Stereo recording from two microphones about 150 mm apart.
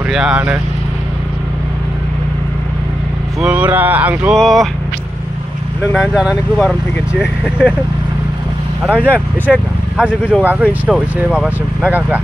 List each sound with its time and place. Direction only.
0.1 s speech: 5° right (ahead or behind)
3.3 s speech: 10° right (ahead or behind)
5.9 s speech: centre (ahead or behind)
8.8 s speech: 10° right (ahead or behind)